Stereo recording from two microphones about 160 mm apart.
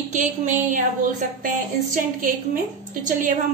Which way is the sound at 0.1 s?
50° right (ahead or behind).